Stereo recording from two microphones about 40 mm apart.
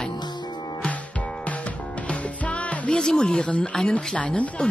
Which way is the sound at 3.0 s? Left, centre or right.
Centre.